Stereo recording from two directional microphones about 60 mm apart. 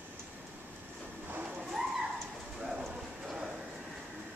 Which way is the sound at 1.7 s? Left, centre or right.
Centre.